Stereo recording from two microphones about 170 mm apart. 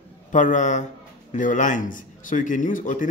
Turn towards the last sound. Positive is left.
turn(degrees=50)  # may be behind; listen again after turning